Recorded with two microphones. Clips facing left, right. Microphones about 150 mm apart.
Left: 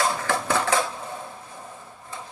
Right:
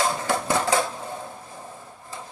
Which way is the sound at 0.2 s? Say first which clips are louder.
Right 1 dB; 25° right (ahead or behind).